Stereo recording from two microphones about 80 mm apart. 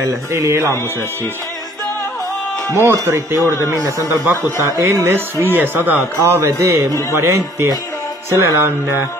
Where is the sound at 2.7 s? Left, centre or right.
Right.